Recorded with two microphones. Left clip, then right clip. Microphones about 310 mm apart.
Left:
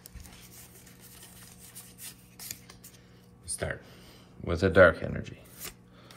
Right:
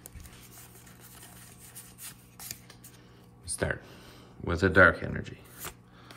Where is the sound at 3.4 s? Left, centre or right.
Centre.